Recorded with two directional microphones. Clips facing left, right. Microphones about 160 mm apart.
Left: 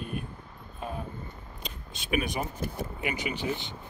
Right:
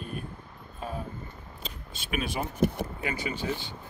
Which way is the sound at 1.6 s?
20° left (ahead or behind).